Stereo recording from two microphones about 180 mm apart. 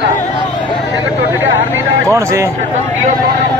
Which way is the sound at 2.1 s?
15° right (ahead or behind).